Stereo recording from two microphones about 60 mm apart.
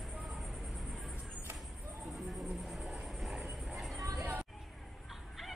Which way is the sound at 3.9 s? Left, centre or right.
Right.